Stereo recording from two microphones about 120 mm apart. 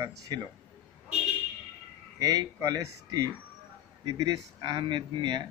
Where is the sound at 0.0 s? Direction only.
30° right (ahead or behind).